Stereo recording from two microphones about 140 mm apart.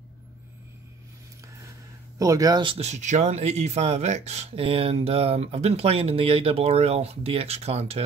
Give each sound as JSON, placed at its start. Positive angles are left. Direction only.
{"t": 2.1, "sound": "speech", "side_deg": -25}
{"t": 2.9, "sound": "speech", "side_deg": -55}